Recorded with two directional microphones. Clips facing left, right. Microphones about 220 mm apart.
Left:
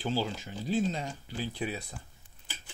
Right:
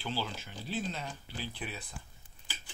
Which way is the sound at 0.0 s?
45° left (ahead or behind).